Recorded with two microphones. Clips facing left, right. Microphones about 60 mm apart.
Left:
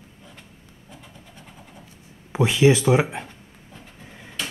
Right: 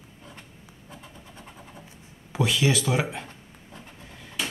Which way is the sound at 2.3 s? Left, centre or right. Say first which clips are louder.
Left 6 dB; left.